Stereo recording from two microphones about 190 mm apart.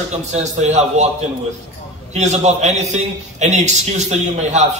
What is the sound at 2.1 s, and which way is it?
A man's voice, 35° right (ahead or behind).